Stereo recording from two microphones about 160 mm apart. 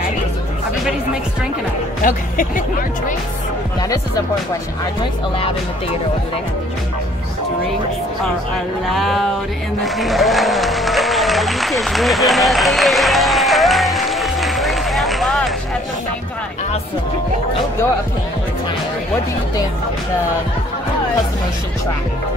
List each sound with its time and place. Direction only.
2.0 s speech: 60° left (ahead or behind)
8.8 s a sound: centre (ahead or behind)
9.8 s applause: centre (ahead or behind)